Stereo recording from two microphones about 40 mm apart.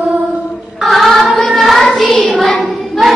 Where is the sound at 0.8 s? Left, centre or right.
Centre.